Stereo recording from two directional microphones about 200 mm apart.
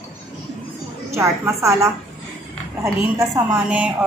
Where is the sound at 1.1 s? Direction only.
15° right (ahead or behind).